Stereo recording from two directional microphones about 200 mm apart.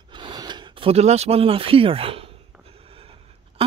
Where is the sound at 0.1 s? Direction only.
20° right (ahead or behind).